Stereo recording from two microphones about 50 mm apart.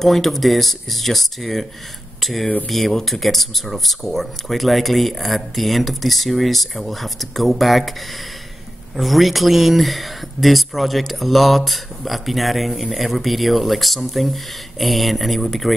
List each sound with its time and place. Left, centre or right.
0.0 s speech: centre
8.9 s speech: centre